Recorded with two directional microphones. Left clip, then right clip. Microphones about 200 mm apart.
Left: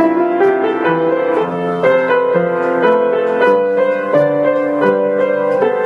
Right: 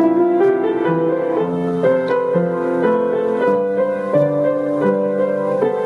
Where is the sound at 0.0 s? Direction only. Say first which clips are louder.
Left 2 dB; 25° left (ahead or behind).